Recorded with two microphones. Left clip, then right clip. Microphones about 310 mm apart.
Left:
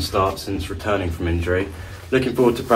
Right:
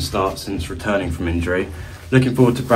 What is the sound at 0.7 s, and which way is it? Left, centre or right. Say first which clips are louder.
A man's voice: right 2 dB; right.